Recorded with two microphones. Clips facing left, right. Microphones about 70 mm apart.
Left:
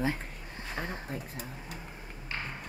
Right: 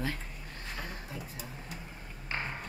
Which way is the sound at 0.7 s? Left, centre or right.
Left.